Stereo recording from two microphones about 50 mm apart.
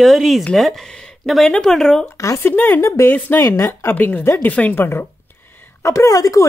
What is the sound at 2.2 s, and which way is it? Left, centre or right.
Speech, left.